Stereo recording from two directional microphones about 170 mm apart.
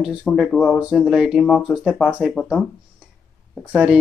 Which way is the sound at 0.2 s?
5° left (ahead or behind).